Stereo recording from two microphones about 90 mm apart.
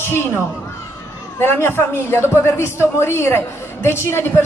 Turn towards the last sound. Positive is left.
turn(degrees=25)  # may be behind; listen again after turning